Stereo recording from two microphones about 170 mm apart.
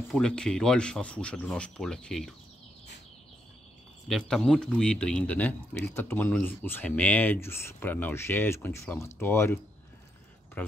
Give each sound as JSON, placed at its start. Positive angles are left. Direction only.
{"t": 0.1, "sound": "speech", "side_deg": 5}
{"t": 4.1, "sound": "a man's voice", "side_deg": 0}